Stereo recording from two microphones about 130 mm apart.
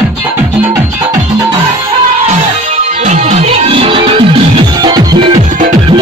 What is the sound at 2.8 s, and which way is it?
Music, 60° right (ahead or behind).